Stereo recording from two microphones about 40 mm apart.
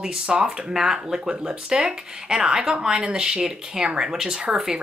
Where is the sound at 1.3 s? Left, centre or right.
Right.